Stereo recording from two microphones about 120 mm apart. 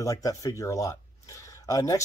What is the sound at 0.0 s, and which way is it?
Speech, 30° left (ahead or behind).